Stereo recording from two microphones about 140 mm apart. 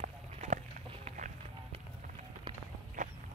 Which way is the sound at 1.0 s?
60° right (ahead or behind).